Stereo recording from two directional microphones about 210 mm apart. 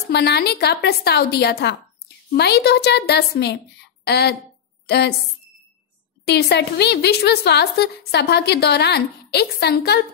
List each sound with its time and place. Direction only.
0.1 s a woman's voice: 50° left (ahead or behind)
6.2 s a woman's voice: 50° left (ahead or behind)